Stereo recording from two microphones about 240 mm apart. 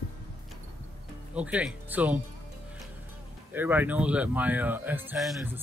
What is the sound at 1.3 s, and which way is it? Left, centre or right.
Speech, centre.